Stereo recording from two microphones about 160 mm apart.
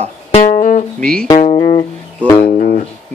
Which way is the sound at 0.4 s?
55° left (ahead or behind).